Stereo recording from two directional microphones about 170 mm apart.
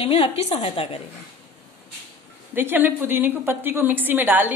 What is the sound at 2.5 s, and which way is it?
A woman's voice, 10° right (ahead or behind).